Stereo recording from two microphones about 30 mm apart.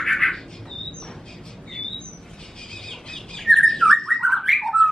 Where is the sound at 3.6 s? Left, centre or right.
Centre.